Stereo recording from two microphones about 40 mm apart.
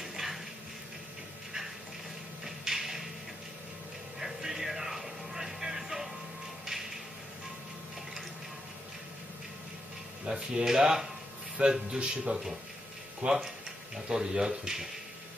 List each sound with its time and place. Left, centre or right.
0.0 s dishes: centre
2.4 s a sound: centre
4.2 s music: centre
10.2 s a sound: right
10.6 s speech: centre
11.6 s speech: right